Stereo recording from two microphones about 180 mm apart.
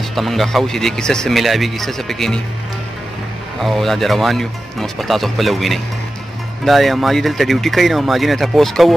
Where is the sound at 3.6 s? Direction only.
Centre (ahead or behind).